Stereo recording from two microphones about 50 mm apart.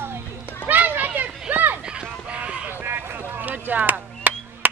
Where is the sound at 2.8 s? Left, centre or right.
Right.